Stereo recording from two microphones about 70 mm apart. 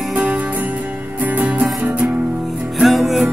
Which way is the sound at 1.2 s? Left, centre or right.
Right.